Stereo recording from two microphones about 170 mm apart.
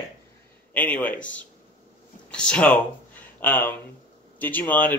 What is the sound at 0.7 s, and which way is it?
Speech, 10° left (ahead or behind).